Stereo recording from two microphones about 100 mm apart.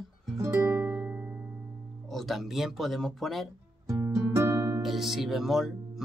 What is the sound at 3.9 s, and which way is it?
Music, 30° right (ahead or behind).